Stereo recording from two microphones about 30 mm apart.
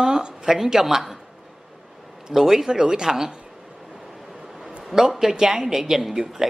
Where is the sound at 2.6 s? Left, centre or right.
Right.